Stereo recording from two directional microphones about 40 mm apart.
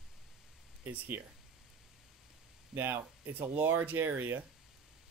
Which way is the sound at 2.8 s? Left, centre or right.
Right.